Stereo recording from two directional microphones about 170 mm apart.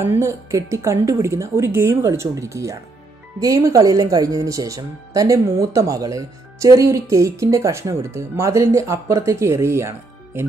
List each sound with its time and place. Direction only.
0.0 s speech: 15° right (ahead or behind)